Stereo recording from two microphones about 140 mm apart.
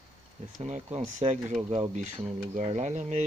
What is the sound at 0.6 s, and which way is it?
Speech, 60° right (ahead or behind).